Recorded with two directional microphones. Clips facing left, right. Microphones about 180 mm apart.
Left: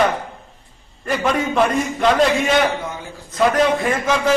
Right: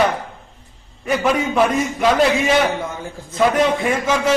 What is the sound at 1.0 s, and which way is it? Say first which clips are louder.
A man's voice: right 1 dB; 5° right (ahead or behind).